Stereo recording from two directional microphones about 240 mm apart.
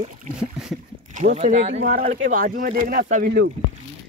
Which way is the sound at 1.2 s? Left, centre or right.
Right.